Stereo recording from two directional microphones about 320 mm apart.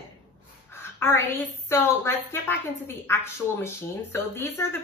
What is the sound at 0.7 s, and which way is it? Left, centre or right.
A woman's voice, centre.